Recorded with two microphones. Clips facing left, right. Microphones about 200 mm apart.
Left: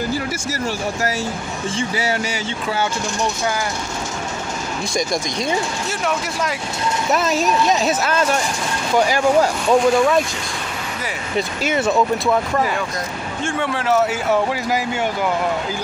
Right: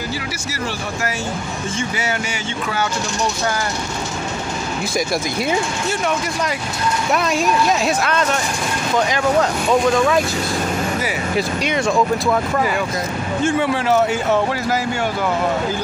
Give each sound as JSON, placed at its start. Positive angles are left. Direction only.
{"t": 1.8, "sound": "speech", "side_deg": 35}
{"t": 7.1, "sound": "speech", "side_deg": 0}
{"t": 11.3, "sound": "speech", "side_deg": 5}